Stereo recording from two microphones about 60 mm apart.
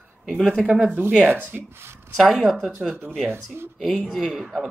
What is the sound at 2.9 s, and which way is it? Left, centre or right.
Speech, right.